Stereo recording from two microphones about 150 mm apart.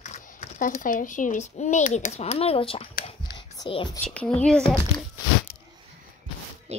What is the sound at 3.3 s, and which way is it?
Whispering, 30° left (ahead or behind).